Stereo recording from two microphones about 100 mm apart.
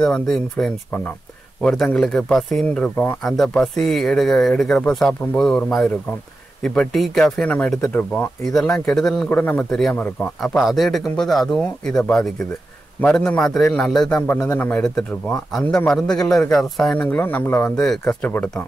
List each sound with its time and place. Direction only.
0.0 s speech: 5° left (ahead or behind)
8.5 s speech: 5° left (ahead or behind)
9.3 s speech: 20° left (ahead or behind)
9.7 s a man's voice: centre (ahead or behind); by 14.8 s 20° left (ahead or behind)
15.9 s speech: 5° left (ahead or behind)
17.0 s speech: 15° left (ahead or behind)
17.8 s speech: 5° left (ahead or behind)
18.2 s speech: 15° left (ahead or behind)